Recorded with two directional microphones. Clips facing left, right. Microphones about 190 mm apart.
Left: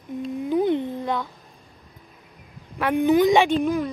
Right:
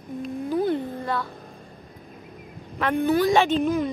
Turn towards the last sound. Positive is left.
turn(degrees=10)  # may be behind; listen again after turning